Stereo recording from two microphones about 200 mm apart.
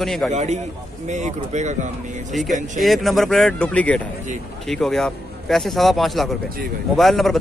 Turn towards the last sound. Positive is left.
turn(degrees=0)  # may be behind; listen again after turning